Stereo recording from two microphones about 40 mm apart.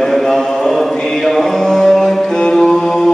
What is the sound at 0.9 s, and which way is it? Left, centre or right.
Mantra, centre.